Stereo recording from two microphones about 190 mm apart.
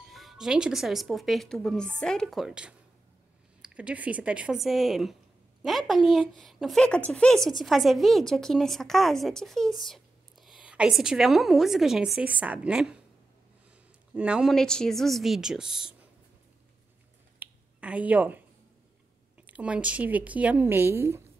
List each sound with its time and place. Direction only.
0.1 s a woman's voice: centre (ahead or behind)
14.1 s a woman's voice: 5° right (ahead or behind)
17.4 s a sound: 5° right (ahead or behind)
19.4 s speech: 5° right (ahead or behind)